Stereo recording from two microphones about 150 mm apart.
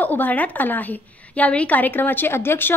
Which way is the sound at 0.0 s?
10° left (ahead or behind).